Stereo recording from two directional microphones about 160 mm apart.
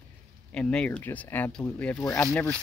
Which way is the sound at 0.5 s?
5° left (ahead or behind).